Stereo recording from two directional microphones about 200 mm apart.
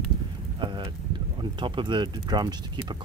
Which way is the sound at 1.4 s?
25° right (ahead or behind).